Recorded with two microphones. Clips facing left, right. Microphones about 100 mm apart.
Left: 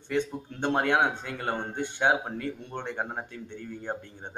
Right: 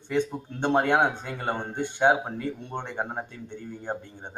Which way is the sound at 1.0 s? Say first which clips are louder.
Right 2 dB; 20° right (ahead or behind).